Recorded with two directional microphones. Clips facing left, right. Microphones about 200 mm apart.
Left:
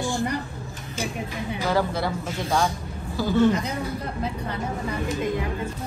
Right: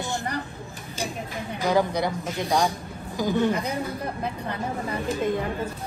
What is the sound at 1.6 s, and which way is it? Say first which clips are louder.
A man's voice: right 2 dB; 15° right (ahead or behind).